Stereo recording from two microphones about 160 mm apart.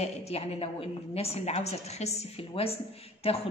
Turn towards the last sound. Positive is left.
turn(degrees=40)  # may be behind; listen again after turning